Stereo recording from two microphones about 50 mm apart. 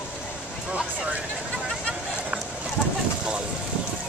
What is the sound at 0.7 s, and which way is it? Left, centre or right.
Vehicle, right.